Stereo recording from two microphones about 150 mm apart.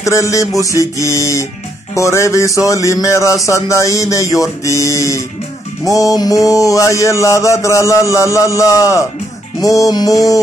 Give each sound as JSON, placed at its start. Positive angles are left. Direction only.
{"t": 0.0, "sound": "speech", "side_deg": 20}